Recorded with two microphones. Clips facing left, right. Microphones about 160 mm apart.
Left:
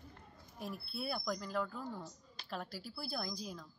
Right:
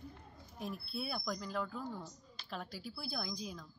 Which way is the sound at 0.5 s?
5° left (ahead or behind).